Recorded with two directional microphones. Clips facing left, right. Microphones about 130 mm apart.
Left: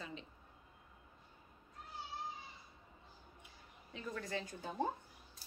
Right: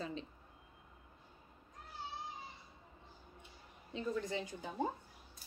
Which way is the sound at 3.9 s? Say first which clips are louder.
Right 4 dB; 20° right (ahead or behind).